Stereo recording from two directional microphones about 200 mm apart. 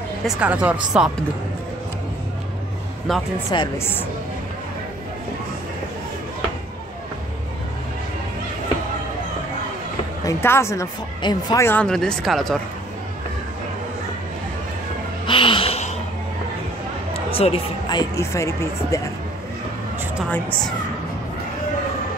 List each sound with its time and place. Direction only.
0.4 s speech: 5° right (ahead or behind)
3.1 s speech: centre (ahead or behind)
3.5 s speech: 25° left (ahead or behind)
10.2 s speech: 15° left (ahead or behind)
15.2 s a sound: 25° left (ahead or behind)
17.1 s speech: 30° left (ahead or behind)
20.2 s speech: 5° left (ahead or behind)